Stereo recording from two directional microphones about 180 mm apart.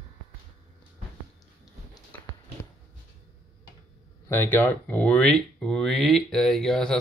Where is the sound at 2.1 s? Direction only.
10° left (ahead or behind).